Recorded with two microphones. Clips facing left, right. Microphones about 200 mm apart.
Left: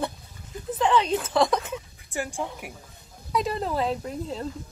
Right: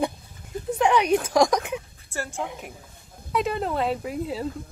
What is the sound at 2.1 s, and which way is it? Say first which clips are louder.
Speech: left 1 dB; 15° left (ahead or behind).